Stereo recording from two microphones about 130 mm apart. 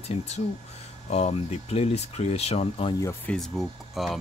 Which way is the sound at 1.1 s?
55° left (ahead or behind).